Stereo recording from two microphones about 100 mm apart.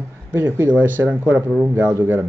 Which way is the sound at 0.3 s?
20° right (ahead or behind).